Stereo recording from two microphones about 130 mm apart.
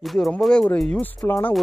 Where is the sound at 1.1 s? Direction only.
25° left (ahead or behind).